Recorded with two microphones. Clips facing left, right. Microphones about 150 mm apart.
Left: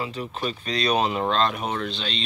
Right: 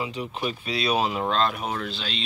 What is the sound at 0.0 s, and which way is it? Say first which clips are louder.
Speech: even; 15° right (ahead or behind).